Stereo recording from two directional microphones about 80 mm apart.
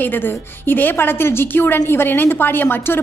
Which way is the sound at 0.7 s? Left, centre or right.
Left.